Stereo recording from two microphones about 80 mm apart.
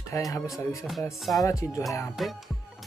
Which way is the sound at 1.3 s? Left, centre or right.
Left.